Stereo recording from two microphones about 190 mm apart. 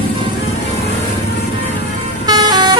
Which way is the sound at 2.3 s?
20° right (ahead or behind).